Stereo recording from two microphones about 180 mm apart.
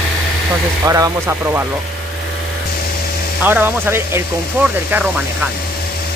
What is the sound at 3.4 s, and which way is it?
Speech, 10° right (ahead or behind).